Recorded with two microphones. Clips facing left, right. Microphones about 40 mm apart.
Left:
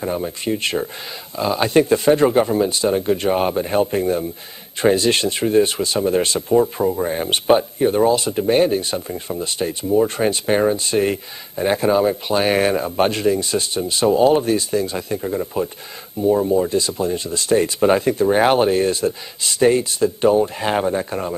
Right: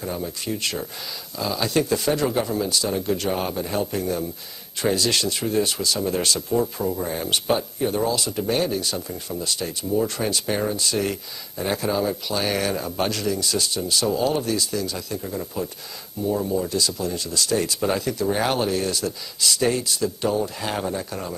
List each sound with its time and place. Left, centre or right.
0.0 s speech: left